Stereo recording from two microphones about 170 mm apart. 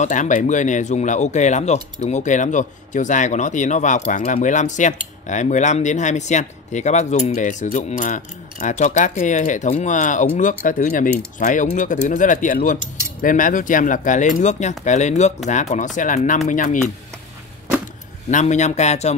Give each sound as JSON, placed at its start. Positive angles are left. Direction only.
{"t": 0.0, "sound": "speech", "side_deg": 45}
{"t": 18.3, "sound": "speech", "side_deg": 45}